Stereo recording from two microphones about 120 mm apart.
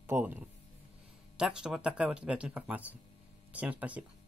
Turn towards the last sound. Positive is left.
turn(degrees=-10)  # may be behind; listen again after turning